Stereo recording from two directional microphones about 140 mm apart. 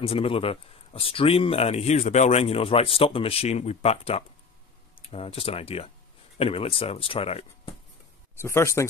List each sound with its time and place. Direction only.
0.0 s speech: 45° left (ahead or behind)
8.4 s speech: 20° left (ahead or behind)